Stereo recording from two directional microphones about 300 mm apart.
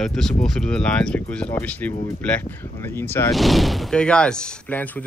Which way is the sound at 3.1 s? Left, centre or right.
Centre.